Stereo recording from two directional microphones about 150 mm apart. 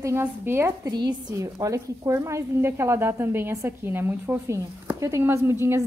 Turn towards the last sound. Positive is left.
turn(degrees=-20)  # may be behind; listen again after turning